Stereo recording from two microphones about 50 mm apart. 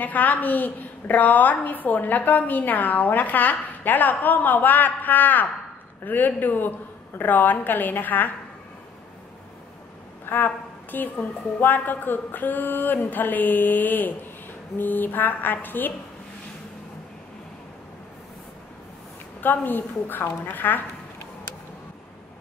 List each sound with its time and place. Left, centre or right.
0.0 s a woman's voice: left
10.2 s a woman's voice: left
19.4 s a woman's voice: left